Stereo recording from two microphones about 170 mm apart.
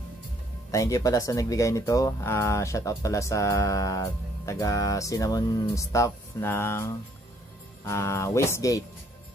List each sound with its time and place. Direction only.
0.7 s speech: 20° left (ahead or behind)